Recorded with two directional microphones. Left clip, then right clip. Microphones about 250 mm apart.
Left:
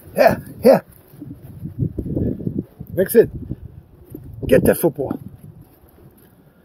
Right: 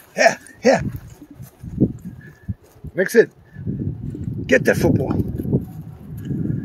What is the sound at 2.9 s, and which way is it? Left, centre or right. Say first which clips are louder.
Speech: left 1 dB; centre.